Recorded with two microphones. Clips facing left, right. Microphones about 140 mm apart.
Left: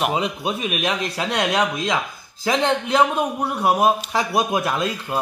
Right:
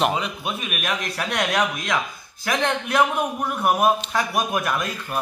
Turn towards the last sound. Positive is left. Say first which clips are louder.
# left 3 dB
turn(degrees=20)  # may be behind; listen again after turning